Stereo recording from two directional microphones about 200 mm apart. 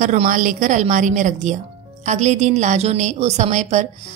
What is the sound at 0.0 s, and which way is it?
A woman's voice, 40° right (ahead or behind).